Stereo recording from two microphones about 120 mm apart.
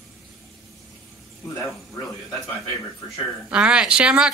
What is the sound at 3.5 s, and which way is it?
Speech, 10° right (ahead or behind).